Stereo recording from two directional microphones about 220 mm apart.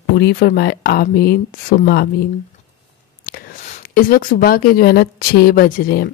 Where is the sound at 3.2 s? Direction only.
40° left (ahead or behind).